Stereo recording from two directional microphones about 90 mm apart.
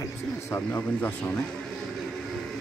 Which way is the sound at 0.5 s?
25° left (ahead or behind).